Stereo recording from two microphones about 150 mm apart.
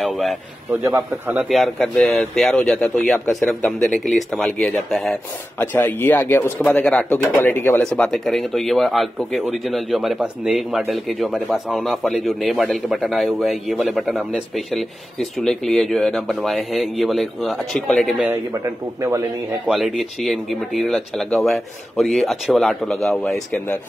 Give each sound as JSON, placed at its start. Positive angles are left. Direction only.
{"t": 0.0, "sound": "speech", "side_deg": 0}
{"t": 0.8, "sound": "a man's voice", "side_deg": -15}
{"t": 1.5, "sound": "speech", "side_deg": 0}
{"t": 18.2, "sound": "a man's voice", "side_deg": -20}
{"t": 19.7, "sound": "speech", "side_deg": 0}